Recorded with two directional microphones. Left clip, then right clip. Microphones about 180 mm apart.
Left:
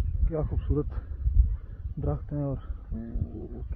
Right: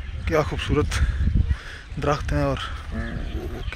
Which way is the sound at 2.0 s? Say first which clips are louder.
Right 11 dB; 15° right (ahead or behind).